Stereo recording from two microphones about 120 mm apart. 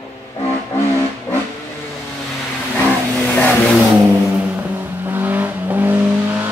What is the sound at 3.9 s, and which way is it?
Vehicle, 15° right (ahead or behind).